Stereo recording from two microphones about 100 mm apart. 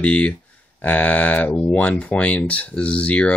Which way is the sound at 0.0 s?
10° left (ahead or behind).